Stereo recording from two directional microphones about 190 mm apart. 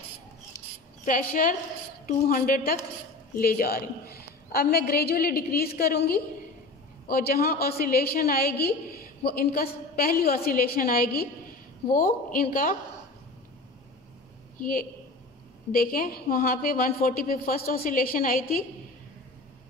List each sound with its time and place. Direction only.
1.0 s a woman's voice: 45° left (ahead or behind)
14.6 s a woman's voice: 50° left (ahead or behind)